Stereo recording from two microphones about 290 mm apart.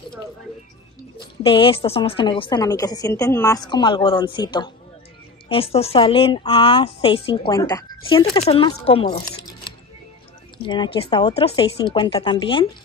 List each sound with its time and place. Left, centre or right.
1.4 s a woman's voice: centre
10.6 s a woman's voice: centre